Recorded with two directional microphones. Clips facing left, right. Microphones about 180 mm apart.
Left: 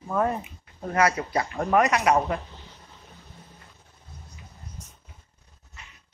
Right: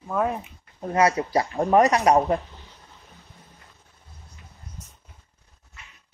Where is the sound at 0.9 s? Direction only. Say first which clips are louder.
Right 3 dB; 25° right (ahead or behind).